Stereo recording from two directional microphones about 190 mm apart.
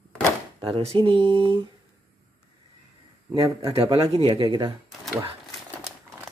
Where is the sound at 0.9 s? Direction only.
25° right (ahead or behind).